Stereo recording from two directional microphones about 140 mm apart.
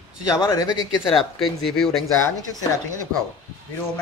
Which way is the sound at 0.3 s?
25° left (ahead or behind).